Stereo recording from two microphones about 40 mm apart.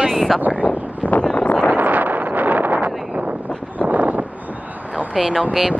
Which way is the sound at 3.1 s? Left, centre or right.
Right.